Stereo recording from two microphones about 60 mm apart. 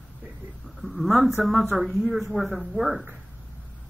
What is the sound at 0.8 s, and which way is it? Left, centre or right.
A woman's voice, centre.